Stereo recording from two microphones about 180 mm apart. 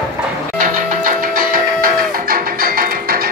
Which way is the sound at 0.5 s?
50° right (ahead or behind).